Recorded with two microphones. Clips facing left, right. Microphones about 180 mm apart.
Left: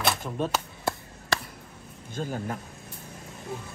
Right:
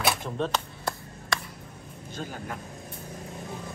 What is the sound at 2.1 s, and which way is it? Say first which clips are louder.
Speech: left 5 dB; 45° left (ahead or behind).